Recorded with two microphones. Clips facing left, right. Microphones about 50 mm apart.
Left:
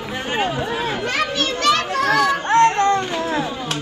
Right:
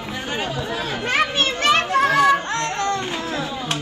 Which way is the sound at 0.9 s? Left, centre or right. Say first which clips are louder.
Right 1 dB; right.